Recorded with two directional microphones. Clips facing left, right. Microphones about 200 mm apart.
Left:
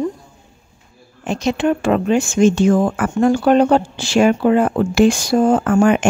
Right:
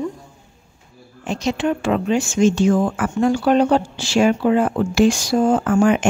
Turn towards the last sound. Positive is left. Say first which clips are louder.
# left 2 dB
turn(degrees=60)  # may be behind; listen again after turning